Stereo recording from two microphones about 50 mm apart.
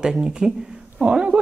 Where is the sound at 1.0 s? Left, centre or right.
Right.